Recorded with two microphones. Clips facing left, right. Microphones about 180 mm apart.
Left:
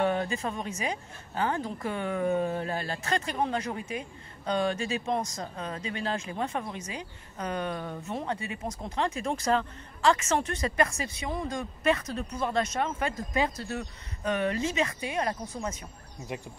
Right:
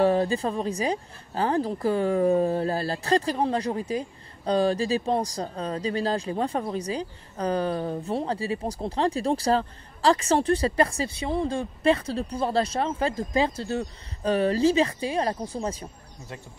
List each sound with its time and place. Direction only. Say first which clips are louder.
0.0 s speech: right 6 dB; 35° right (ahead or behind)